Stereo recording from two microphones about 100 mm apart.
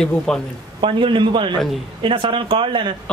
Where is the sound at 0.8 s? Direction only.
55° right (ahead or behind).